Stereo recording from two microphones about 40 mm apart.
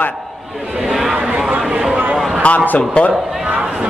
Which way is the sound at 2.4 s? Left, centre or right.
Left.